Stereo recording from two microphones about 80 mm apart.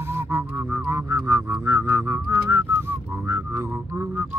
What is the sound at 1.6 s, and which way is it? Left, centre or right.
Whistling, right.